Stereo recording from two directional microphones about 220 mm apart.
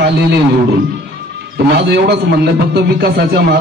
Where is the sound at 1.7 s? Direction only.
50° right (ahead or behind).